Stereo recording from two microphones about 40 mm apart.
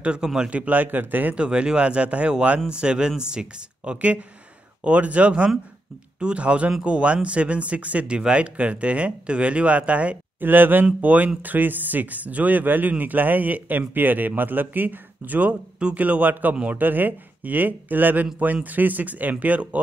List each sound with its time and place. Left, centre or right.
0.5 s speech: right
0.9 s speech: right
1.3 s speech: right
10.4 s speech: right
11.0 s speech: right